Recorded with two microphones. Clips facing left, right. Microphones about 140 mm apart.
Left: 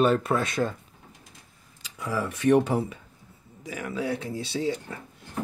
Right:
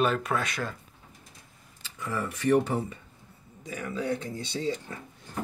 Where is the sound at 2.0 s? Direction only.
90° left.